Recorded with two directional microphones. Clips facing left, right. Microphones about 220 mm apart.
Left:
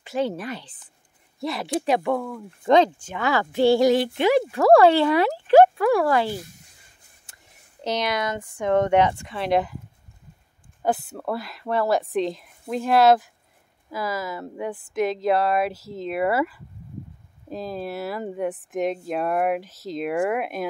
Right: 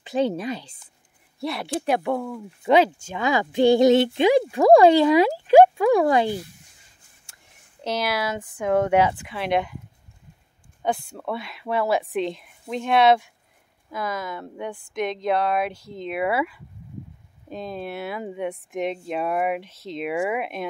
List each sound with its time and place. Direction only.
0.0 s speech: 15° right (ahead or behind)
1.4 s speech: centre (ahead or behind); by 6.4 s 20° right (ahead or behind)
7.8 s speech: 5° right (ahead or behind)
10.8 s speech: 5° left (ahead or behind)